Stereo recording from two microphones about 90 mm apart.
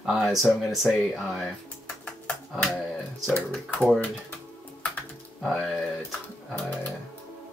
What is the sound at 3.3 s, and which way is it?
Speech, 20° left (ahead or behind).